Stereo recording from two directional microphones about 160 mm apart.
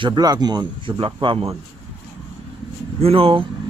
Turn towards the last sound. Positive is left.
turn(degrees=-35)  # may be behind; listen again after turning